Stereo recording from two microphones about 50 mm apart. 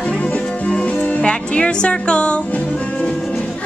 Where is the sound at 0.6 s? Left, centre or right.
Left.